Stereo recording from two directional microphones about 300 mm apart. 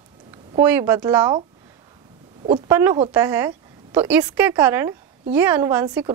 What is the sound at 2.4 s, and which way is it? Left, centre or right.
A woman's voice, centre.